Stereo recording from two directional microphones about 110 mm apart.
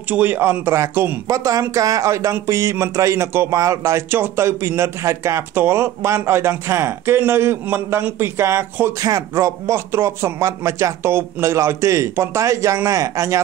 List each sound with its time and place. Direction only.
0.1 s speech: 15° right (ahead or behind)